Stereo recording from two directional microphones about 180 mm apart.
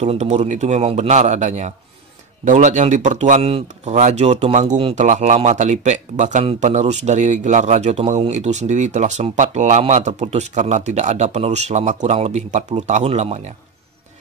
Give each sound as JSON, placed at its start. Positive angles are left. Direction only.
{"t": 0.0, "sound": "speech", "side_deg": -40}